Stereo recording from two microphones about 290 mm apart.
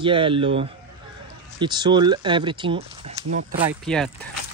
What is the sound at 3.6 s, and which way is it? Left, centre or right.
Speech, centre.